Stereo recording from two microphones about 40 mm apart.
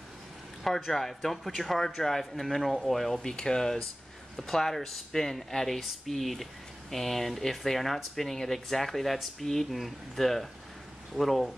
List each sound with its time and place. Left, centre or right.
0.7 s speech: centre
3.3 s speech: centre